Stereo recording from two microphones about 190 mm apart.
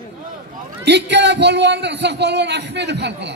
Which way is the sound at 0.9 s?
65° right (ahead or behind).